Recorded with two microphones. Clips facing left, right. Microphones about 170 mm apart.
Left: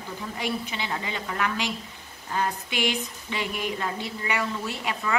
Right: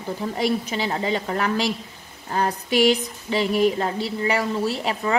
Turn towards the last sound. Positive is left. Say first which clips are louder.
# right 6 dB
turn(degrees=-35)  # may be behind; listen again after turning